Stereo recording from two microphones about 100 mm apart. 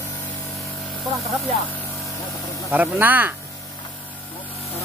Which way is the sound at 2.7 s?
15° right (ahead or behind).